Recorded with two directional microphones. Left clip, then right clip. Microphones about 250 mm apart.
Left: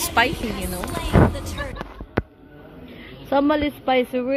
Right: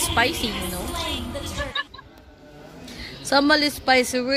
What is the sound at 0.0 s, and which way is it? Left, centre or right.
Speech, centre.